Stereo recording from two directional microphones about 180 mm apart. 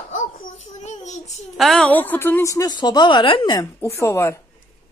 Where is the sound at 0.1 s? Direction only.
45° left (ahead or behind).